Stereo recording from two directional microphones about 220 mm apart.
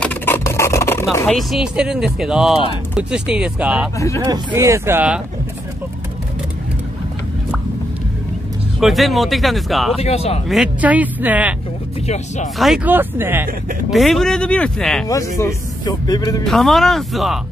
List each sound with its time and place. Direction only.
0.0 s a sound: 10° left (ahead or behind)
1.2 s speech: centre (ahead or behind)
8.7 s speech: centre (ahead or behind)
10.0 s speech: 30° left (ahead or behind)
10.5 s speech: 5° right (ahead or behind)
12.5 s speech: centre (ahead or behind)
15.0 s speech: 15° left (ahead or behind)
16.4 s speech: centre (ahead or behind)